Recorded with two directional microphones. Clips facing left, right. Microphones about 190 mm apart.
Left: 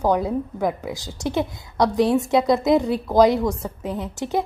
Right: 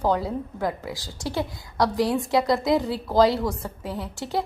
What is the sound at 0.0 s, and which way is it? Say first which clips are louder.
A woman's voice: left 4 dB; 15° left (ahead or behind).